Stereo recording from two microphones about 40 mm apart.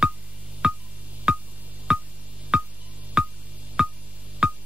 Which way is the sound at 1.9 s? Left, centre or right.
Centre.